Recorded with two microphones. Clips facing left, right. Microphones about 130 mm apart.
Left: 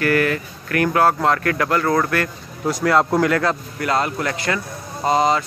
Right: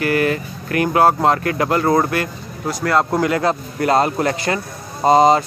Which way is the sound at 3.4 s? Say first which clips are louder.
Right 3 dB; 30° right (ahead or behind).